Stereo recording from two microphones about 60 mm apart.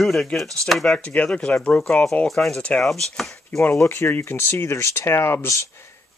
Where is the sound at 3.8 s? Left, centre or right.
Left.